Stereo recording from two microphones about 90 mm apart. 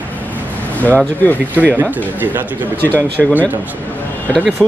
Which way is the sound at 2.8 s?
20° left (ahead or behind).